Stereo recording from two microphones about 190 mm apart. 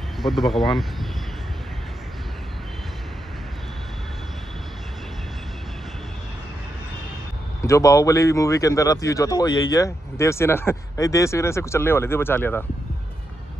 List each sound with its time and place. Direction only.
0.2 s speech: centre (ahead or behind)
7.6 s speech: 15° left (ahead or behind)